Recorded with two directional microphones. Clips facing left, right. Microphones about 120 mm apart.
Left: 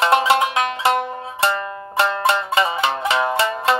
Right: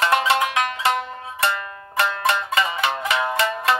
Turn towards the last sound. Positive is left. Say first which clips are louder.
# left 2 dB
turn(degrees=25)  # may be behind; listen again after turning